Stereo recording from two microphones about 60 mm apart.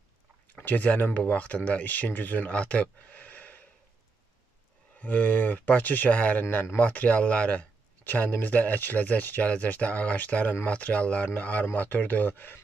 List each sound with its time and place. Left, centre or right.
0.6 s speech: left
5.0 s speech: left
6.4 s speech: left
6.8 s speech: left
8.0 s speech: left